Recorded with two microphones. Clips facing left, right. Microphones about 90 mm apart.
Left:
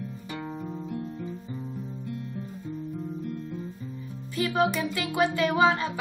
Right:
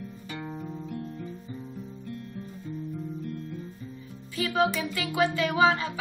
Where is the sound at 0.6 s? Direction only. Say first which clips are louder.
Left 2 dB; 20° left (ahead or behind).